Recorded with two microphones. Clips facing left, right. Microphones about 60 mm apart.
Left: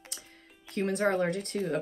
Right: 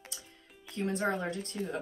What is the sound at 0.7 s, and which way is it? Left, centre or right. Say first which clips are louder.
Speech: left 4 dB; left.